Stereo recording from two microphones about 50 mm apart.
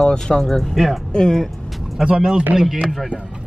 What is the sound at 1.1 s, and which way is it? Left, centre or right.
Speech, centre.